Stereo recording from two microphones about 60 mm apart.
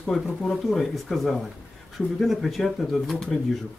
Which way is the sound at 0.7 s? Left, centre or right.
Centre.